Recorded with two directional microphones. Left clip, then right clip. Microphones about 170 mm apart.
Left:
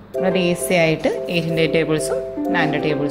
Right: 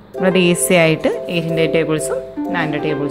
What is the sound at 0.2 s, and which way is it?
A woman's voice, 25° right (ahead or behind).